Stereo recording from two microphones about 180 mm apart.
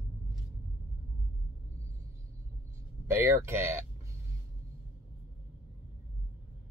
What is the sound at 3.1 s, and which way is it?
Speech, 15° right (ahead or behind).